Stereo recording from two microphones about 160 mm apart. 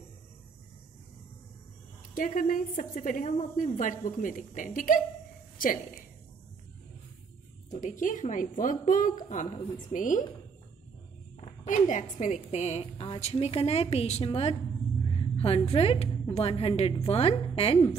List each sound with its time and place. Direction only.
2.1 s a woman's voice: 60° left (ahead or behind)
7.7 s a woman's voice: 50° left (ahead or behind)
11.6 s a woman's voice: 50° left (ahead or behind)